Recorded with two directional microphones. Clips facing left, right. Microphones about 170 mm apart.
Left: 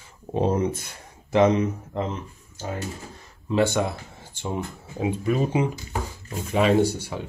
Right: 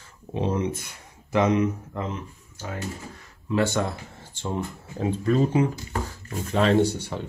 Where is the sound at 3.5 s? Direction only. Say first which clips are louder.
Left 2 dB; 15° left (ahead or behind).